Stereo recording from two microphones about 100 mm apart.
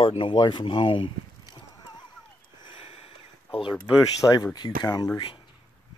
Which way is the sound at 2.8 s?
80° left.